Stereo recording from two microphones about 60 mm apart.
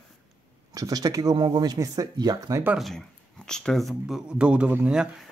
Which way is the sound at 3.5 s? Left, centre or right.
Centre.